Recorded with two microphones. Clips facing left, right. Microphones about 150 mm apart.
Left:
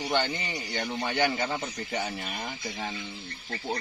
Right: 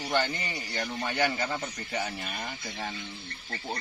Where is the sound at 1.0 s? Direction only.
Centre (ahead or behind).